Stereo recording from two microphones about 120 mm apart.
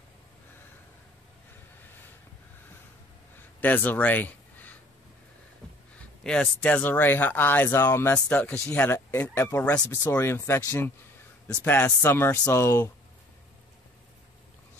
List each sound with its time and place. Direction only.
3.6 s speech: 15° left (ahead or behind)
6.2 s speech: 5° left (ahead or behind); by 12.9 s 25° left (ahead or behind)